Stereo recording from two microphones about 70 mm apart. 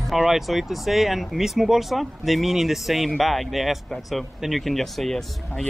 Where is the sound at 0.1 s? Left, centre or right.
Centre.